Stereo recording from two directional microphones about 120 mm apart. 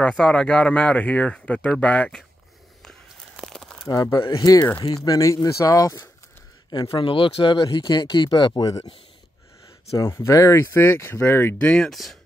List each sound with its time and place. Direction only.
0.2 s speech: 10° left (ahead or behind)
2.8 s a sound: centre (ahead or behind)
3.9 s speech: 30° left (ahead or behind)
6.9 s speech: 45° left (ahead or behind)
9.9 s speech: 25° left (ahead or behind)
11.7 s speech: 5° left (ahead or behind)